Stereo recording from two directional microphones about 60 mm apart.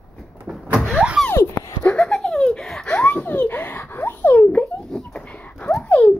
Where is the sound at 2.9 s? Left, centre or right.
Left.